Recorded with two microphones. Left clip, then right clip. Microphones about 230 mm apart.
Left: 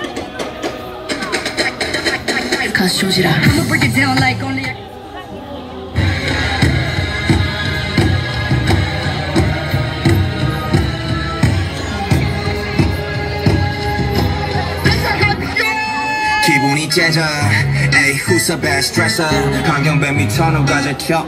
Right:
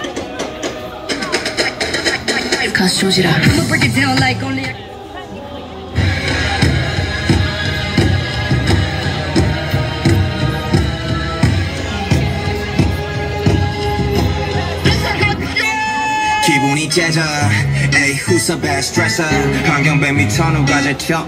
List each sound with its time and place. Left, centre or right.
1.3 s music: centre
6.2 s music: centre
7.9 s music: centre
10.0 s music: centre
13.4 s music: centre
16.2 s speech: centre